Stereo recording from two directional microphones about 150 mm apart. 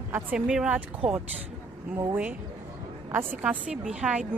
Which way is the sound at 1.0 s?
45° right (ahead or behind).